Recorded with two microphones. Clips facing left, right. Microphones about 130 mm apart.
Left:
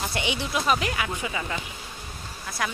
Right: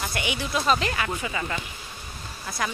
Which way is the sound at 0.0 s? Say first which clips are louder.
Left 1 dB; 25° left (ahead or behind).